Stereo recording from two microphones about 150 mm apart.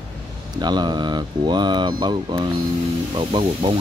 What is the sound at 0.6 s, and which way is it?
Speech, 30° right (ahead or behind).